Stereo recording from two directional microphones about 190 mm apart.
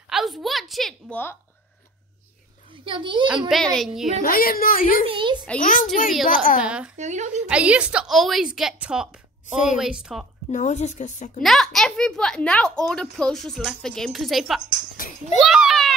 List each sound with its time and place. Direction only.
0.1 s a child's voice: centre (ahead or behind)
2.7 s a child's voice: 25° right (ahead or behind)
3.4 s a child's voice: centre (ahead or behind)
4.2 s a woman's voice: 50° left (ahead or behind)
5.0 s a child's voice: 25° right (ahead or behind)
5.6 s a woman's voice: 45° left (ahead or behind)
6.6 s a child's voice: 5° right (ahead or behind)
7.0 s a woman's voice: 40° right (ahead or behind)
7.4 s a child's voice: 5° right (ahead or behind)
10.5 s a woman's voice: 40° left (ahead or behind)
11.4 s a child's voice: centre (ahead or behind)
15.0 s children playing: 45° left (ahead or behind)
15.3 s a sound: centre (ahead or behind)